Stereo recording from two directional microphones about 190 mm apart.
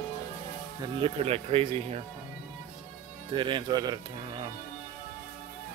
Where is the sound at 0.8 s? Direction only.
25° right (ahead or behind).